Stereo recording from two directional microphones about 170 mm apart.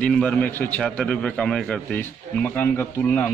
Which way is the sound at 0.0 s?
5° left (ahead or behind).